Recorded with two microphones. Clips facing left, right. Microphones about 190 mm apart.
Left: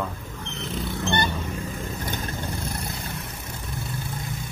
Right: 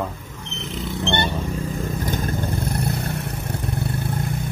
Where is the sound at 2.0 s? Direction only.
45° right (ahead or behind); by 4.4 s 60° right (ahead or behind).